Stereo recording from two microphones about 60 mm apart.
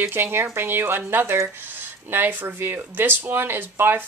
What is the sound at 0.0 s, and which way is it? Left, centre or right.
Speech, right.